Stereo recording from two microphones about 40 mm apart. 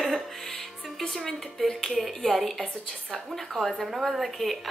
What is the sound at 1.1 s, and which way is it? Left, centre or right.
A woman's voice, centre.